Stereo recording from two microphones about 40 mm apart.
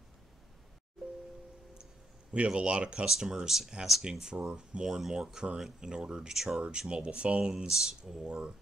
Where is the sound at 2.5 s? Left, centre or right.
Right.